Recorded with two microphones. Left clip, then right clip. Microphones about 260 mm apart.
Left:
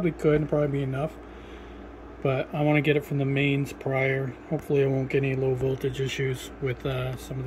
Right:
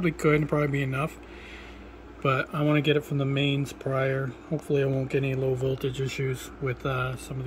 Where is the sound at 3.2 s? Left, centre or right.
Left.